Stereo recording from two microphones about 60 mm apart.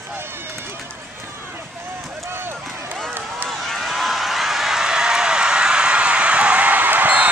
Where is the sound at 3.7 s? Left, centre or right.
Centre.